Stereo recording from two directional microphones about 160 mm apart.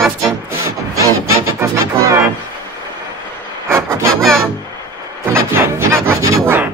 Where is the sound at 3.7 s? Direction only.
20° right (ahead or behind).